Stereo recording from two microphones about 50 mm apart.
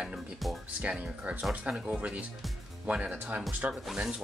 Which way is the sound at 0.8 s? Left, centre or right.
Right.